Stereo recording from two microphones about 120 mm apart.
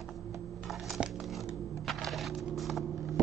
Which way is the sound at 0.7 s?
Centre (ahead or behind).